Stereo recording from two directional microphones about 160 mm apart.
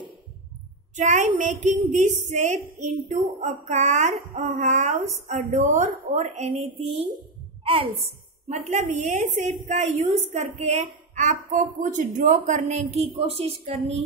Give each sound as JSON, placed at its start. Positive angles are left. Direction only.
{"t": 0.9, "sound": "a woman's voice", "side_deg": -50}